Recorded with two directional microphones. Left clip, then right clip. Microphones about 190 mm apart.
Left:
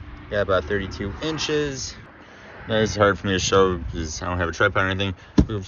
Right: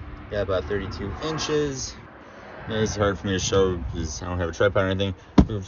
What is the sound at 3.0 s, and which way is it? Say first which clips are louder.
Speech: left 6 dB; 10° right (ahead or behind).